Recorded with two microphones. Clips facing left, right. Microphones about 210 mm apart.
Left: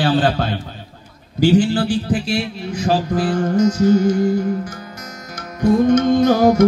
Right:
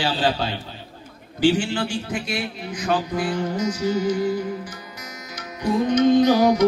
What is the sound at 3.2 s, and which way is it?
Music, 50° left (ahead or behind).